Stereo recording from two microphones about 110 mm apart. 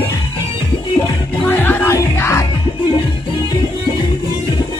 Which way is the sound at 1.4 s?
15° left (ahead or behind).